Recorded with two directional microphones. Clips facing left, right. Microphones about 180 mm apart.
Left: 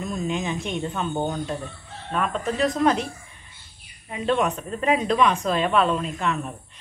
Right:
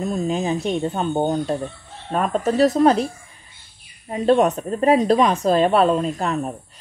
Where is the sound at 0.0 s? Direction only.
35° right (ahead or behind).